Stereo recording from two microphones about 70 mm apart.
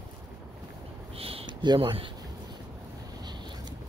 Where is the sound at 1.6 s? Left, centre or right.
Right.